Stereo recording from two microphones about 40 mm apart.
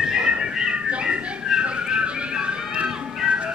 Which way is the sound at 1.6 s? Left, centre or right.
Right.